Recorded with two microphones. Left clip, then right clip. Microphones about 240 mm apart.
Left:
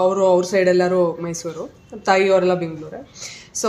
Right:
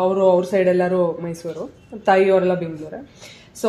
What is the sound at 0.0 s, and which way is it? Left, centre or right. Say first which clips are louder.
Speech: even; left.